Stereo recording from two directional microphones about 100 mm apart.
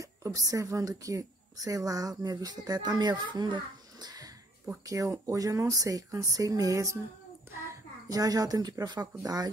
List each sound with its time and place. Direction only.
0.0 s speech: 35° right (ahead or behind)
4.8 s speech: 30° right (ahead or behind)
8.1 s speech: 40° right (ahead or behind)